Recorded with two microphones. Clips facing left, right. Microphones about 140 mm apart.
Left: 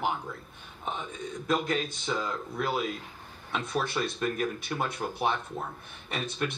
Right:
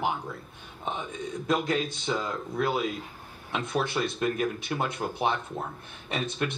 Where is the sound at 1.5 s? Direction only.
5° right (ahead or behind).